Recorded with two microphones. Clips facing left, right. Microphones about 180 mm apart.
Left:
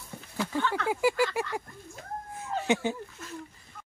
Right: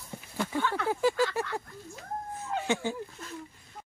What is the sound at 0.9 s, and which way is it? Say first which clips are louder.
Speech: even; 10° left (ahead or behind).